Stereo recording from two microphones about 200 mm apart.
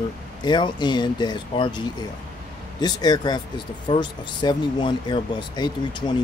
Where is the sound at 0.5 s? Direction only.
20° left (ahead or behind).